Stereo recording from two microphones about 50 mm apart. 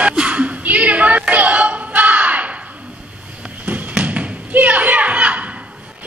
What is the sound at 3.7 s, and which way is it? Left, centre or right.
Thump, right.